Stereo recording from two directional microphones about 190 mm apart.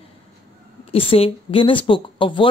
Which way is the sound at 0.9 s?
30° left (ahead or behind).